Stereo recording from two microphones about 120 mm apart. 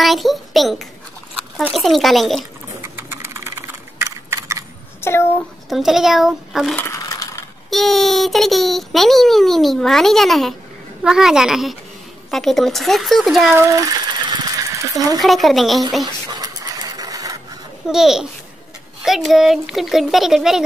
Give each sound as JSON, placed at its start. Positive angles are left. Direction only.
{"t": 0.0, "sound": "a child's voice", "side_deg": 0}
{"t": 2.8, "sound": "computer keyboard", "side_deg": -20}
{"t": 5.7, "sound": "a child's voice", "side_deg": -5}
{"t": 7.0, "sound": "crushing", "side_deg": 30}
{"t": 7.7, "sound": "a child's voice", "side_deg": 0}
{"t": 13.6, "sound": "a sound", "side_deg": -30}
{"t": 15.1, "sound": "a child's voice", "side_deg": 0}
{"t": 16.3, "sound": "printer", "side_deg": -30}
{"t": 17.8, "sound": "a child's voice", "side_deg": -5}